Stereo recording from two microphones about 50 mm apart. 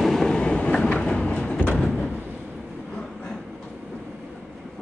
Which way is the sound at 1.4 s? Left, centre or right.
Left.